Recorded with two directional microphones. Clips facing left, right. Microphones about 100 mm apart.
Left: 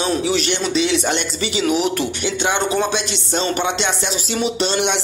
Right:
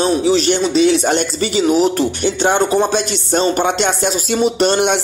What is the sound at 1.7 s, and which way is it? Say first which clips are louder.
Music: right 5 dB; 35° right (ahead or behind).